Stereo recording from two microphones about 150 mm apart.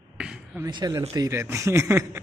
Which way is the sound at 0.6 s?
25° right (ahead or behind).